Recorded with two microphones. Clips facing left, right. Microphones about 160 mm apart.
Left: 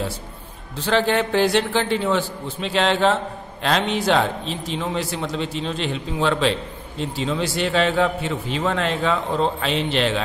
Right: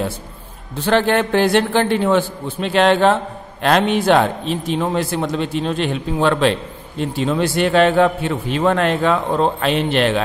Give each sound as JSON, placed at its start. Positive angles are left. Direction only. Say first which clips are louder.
{"t": 0.8, "sound": "a man's voice", "louder": "right 4 dB", "side_deg": -55}